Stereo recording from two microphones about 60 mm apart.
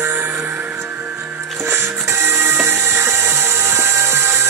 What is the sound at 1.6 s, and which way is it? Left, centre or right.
Music, right.